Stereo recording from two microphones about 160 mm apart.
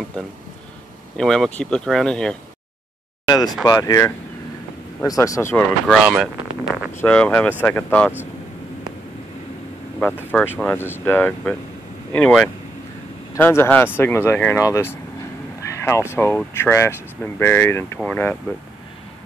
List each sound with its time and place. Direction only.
1.1 s speech: 5° left (ahead or behind)
3.3 s speech: 25° left (ahead or behind)
7.0 s speech: 10° left (ahead or behind)
9.9 s speech: 5° left (ahead or behind)